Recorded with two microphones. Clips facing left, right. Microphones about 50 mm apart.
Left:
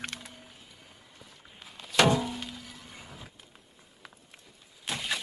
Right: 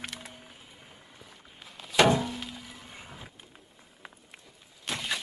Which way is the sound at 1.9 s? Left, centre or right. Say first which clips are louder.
Right 1 dB; centre.